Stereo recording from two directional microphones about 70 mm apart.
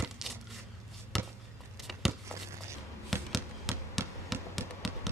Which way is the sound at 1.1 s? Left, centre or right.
Centre.